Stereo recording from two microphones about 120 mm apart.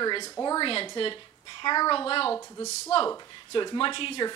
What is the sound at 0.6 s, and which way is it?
A woman's voice, 45° left (ahead or behind).